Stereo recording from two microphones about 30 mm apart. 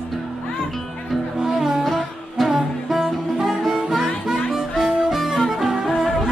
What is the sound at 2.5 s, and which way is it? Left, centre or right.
Music, centre.